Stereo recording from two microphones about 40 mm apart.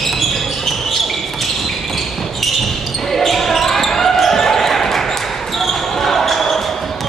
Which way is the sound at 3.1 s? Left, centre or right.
Centre.